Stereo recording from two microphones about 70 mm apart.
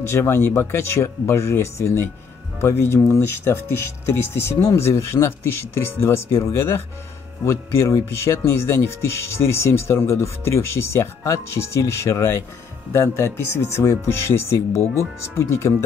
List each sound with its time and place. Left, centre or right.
0.1 s speech: left